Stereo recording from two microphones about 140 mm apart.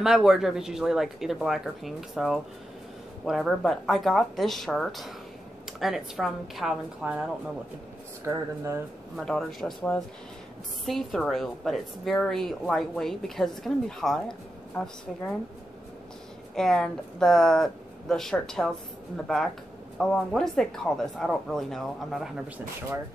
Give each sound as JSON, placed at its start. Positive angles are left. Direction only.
{"t": 0.0, "sound": "a woman's voice", "side_deg": -5}
{"t": 8.3, "sound": "speech", "side_deg": -25}
{"t": 9.1, "sound": "a woman's voice", "side_deg": 5}
{"t": 10.9, "sound": "a woman's voice", "side_deg": 0}
{"t": 16.5, "sound": "a woman's voice", "side_deg": 5}